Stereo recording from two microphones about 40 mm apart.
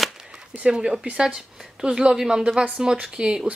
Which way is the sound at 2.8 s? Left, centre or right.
Right.